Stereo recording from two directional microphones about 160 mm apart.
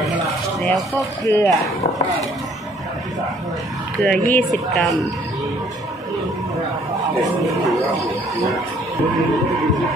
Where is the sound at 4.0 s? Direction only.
10° left (ahead or behind).